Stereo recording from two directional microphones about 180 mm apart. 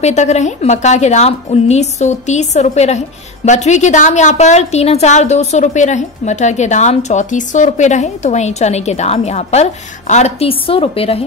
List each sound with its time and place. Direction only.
0.0 s a woman's voice: 40° left (ahead or behind)